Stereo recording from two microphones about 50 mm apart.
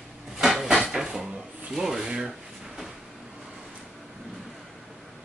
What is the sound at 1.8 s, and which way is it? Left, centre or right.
Speech, centre.